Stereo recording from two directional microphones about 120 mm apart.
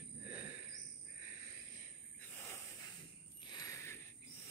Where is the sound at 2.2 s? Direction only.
15° left (ahead or behind).